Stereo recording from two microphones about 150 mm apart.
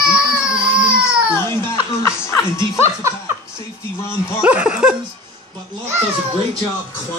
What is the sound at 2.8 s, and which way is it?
Speech, 20° right (ahead or behind).